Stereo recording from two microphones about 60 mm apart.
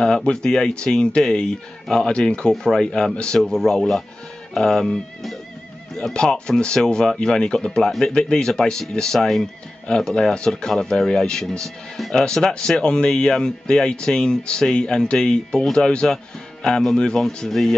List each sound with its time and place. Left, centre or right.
0.0 s speech: centre
17.5 s speech: centre